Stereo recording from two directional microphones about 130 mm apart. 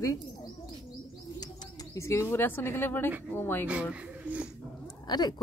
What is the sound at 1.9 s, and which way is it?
Speech, 20° left (ahead or behind).